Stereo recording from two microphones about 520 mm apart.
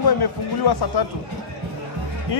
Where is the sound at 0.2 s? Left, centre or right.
Left.